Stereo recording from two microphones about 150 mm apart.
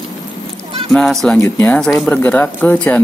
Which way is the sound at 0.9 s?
Centre (ahead or behind).